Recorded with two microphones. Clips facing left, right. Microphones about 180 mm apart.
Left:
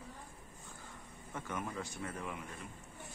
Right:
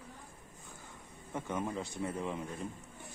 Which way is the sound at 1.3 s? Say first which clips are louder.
Right 5 dB; 20° right (ahead or behind).